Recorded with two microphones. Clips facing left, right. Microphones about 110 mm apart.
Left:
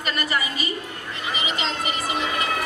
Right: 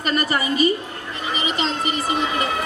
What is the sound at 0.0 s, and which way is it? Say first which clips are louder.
A woman's voice: right 4 dB; 40° right (ahead or behind).